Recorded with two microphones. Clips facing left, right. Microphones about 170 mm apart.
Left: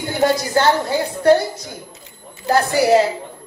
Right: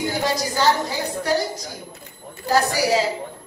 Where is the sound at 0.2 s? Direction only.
60° left (ahead or behind).